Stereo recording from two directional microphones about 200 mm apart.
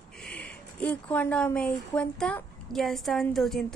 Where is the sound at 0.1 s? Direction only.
5° left (ahead or behind).